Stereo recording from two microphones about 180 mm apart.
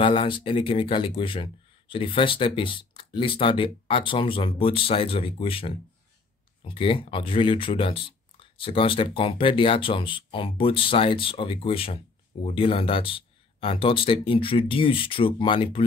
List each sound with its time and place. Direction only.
0.0 s speech: 30° left (ahead or behind)